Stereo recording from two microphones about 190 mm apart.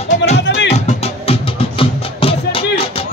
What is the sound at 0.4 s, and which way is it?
Music, 65° left (ahead or behind).